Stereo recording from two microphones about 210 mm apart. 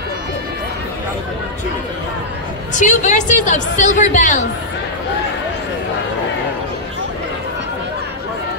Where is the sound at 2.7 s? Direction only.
35° left (ahead or behind).